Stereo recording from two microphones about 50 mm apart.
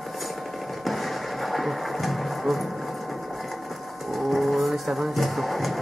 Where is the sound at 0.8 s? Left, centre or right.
Centre.